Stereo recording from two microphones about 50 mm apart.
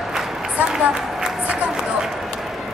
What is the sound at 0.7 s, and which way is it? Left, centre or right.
Run, centre.